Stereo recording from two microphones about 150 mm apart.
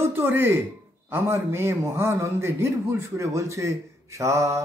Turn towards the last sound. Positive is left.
turn(degrees=-20)  # may be behind; listen again after turning